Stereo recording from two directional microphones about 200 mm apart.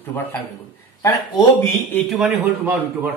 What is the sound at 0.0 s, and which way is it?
Speech, 10° left (ahead or behind).